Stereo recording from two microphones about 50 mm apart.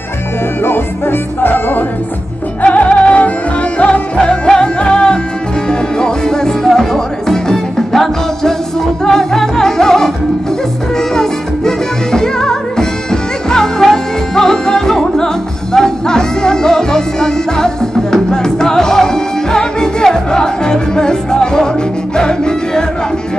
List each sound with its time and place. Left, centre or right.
0.7 s music: left
2.6 s music: left; by 10.1 s centre
11.1 s music: centre